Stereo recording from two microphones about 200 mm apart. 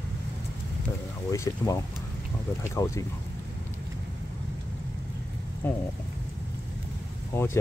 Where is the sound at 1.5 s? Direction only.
15° left (ahead or behind).